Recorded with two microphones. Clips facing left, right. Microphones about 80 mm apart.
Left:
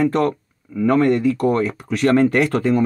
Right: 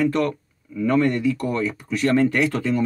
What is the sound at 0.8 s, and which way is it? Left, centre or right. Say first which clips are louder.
Speech: left 4 dB; left.